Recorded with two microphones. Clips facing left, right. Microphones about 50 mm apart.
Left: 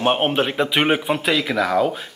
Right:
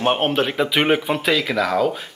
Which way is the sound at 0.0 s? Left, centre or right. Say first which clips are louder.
Even; centre.